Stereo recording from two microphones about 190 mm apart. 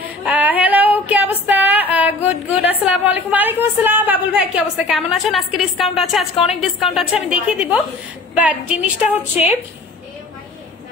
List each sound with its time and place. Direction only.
0.3 s female singing: 10° right (ahead or behind)
2.6 s a woman's voice: 10° right (ahead or behind)
6.3 s a woman's voice: 30° left (ahead or behind)
6.8 s a woman's voice: centre (ahead or behind)